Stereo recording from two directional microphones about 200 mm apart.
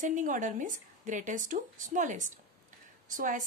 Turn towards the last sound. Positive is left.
turn(degrees=-40)  # may be behind; listen again after turning